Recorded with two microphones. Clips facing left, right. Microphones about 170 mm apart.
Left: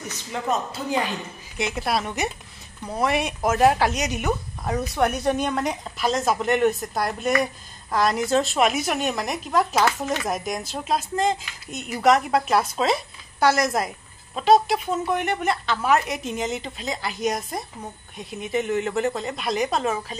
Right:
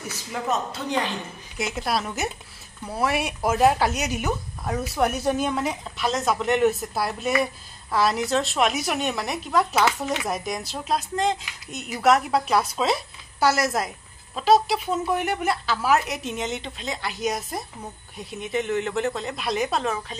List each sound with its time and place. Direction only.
0.0 s a woman's voice: 5° right (ahead or behind)